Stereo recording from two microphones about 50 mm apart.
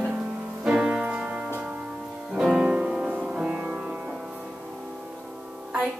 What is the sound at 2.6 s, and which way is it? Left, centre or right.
Music, centre.